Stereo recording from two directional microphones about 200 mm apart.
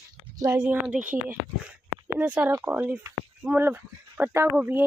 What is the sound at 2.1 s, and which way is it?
Speech, 10° right (ahead or behind).